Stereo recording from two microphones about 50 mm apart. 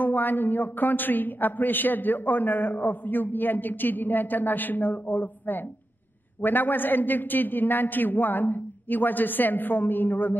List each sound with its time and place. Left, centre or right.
0.0 s a woman's voice: left